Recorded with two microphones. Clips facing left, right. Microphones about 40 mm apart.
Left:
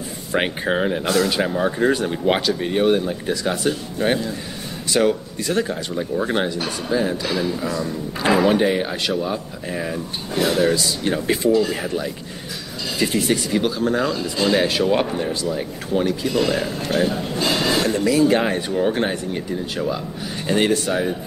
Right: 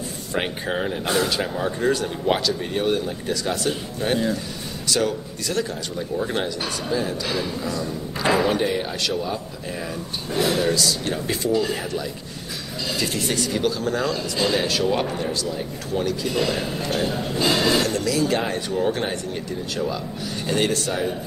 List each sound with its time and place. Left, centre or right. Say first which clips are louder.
0.3 s speech: left 5 dB; left
1.0 s speech: left 1 dB; centre
1.3 s speech: left 4 dB; centre
7.2 s speech: left 3 dB; centre
8.5 s speech: left 4 dB; centre
10.3 s speech: left 3 dB; centre
10.7 s speech: left 2 dB; centre
11.5 s speech: left 3 dB; centre
11.8 s speech: left 3 dB; left
13.2 s speech: left 3 dB; centre
14.6 s speech: left 3 dB; centre
16.3 s speech: left 3 dB; centre
17.8 s speech: left 5 dB; left